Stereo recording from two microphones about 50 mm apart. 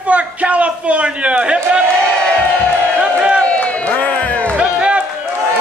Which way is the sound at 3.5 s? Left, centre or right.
Left.